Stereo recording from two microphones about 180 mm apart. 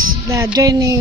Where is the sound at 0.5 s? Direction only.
20° right (ahead or behind).